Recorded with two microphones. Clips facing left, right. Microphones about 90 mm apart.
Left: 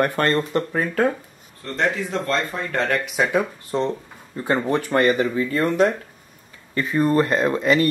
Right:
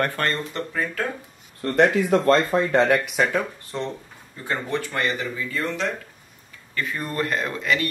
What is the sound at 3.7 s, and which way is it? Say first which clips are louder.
Speech: left 7 dB; 25° left (ahead or behind).